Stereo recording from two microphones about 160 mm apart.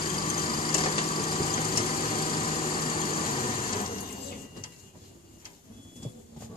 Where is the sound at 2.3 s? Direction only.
40° left (ahead or behind).